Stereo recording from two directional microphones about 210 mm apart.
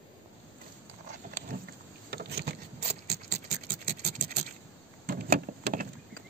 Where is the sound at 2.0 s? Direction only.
50° right (ahead or behind).